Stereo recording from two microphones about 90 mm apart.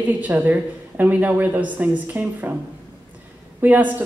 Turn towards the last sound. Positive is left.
turn(degrees=-20)  # may be behind; listen again after turning